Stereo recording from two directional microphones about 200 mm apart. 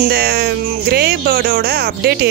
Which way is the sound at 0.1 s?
55° right (ahead or behind).